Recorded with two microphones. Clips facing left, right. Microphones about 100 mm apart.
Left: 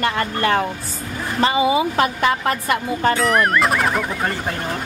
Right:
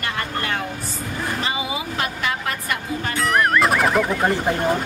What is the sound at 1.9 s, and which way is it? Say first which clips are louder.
A woman's voice: left 7 dB; 35° left (ahead or behind).